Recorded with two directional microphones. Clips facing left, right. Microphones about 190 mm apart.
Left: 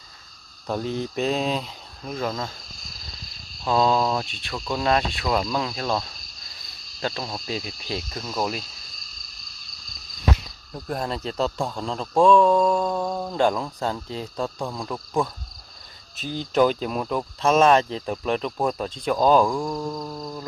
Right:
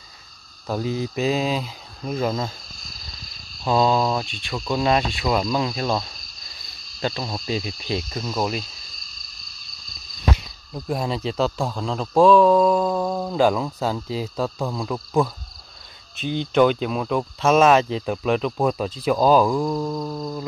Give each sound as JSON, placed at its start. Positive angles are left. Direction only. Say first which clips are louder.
{"t": 0.7, "sound": "speech", "louder": "right 2 dB", "side_deg": -5}
{"t": 3.6, "sound": "speech", "louder": "right 2 dB", "side_deg": -5}
{"t": 10.3, "sound": "speech", "louder": "right 1 dB", "side_deg": -5}
{"t": 16.2, "sound": "speech", "louder": "right 5 dB", "side_deg": 40}
{"t": 16.5, "sound": "speech", "louder": "right 2 dB", "side_deg": 0}